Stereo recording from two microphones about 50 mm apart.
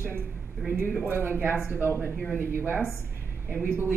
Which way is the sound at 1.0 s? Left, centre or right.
Right.